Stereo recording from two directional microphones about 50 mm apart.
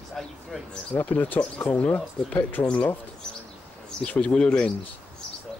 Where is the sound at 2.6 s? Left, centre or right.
Left.